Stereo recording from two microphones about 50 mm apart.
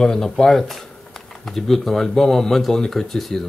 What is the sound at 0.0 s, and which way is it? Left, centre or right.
Speech, centre.